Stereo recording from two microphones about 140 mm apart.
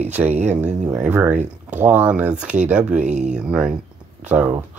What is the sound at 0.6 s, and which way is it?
Speech, 55° right (ahead or behind).